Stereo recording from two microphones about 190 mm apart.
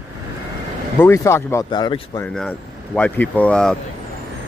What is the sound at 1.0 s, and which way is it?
A man's voice, 15° left (ahead or behind).